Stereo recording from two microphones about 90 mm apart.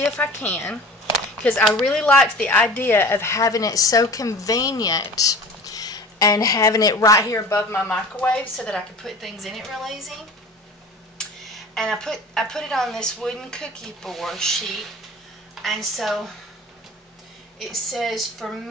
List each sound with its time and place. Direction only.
0.2 s a woman's voice: 20° left (ahead or behind)
1.5 s a woman's voice: 5° left (ahead or behind); by 7.8 s 30° left (ahead or behind)
7.8 s a woman's voice: 15° left (ahead or behind); by 10.1 s centre (ahead or behind)
11.1 s a woman's voice: 5° left (ahead or behind)
17.6 s a woman's voice: centre (ahead or behind)